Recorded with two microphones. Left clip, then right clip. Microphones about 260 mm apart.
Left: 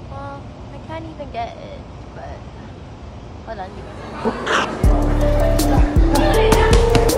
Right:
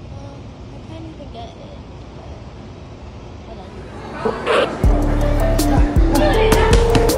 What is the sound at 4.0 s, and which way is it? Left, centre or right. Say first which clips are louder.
Music: right 1 dB; centre.